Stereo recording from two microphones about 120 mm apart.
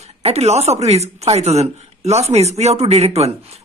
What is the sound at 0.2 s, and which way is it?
Speech, 60° right (ahead or behind).